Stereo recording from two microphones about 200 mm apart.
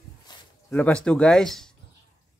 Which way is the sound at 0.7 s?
5° left (ahead or behind).